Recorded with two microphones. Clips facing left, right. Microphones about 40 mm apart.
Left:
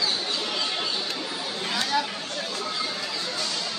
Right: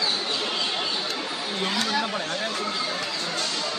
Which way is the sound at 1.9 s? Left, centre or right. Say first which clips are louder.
Left 3 dB; centre.